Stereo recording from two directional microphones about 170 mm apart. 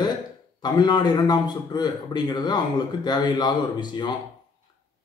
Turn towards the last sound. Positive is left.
turn(degrees=25)  # may be behind; listen again after turning